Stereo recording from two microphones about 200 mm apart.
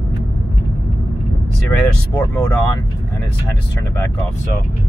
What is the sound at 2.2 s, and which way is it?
Speech, 10° left (ahead or behind).